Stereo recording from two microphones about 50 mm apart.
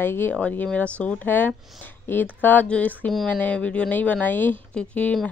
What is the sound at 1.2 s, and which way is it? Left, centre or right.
Speech, left.